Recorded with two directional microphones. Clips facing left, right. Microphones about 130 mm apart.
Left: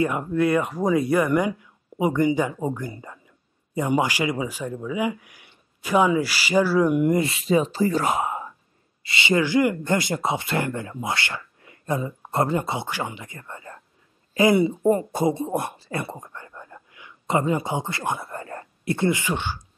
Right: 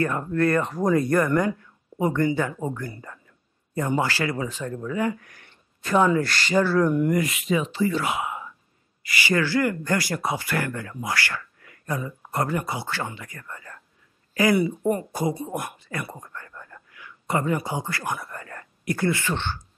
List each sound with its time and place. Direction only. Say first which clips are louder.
0.0 s speech: left 1 dB; 10° left (ahead or behind); by 8.5 s 40° left (ahead or behind)
9.0 s speech: left 2 dB; 25° left (ahead or behind)